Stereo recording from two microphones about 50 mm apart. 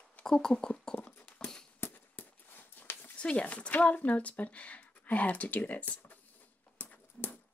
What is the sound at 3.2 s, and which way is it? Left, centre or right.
Speech, left.